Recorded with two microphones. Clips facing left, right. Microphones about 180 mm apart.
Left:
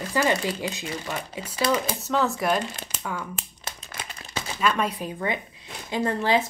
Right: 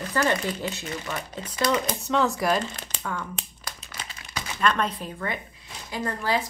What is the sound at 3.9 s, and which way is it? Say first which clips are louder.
Crumpling: left 2 dB; 50° left (ahead or behind).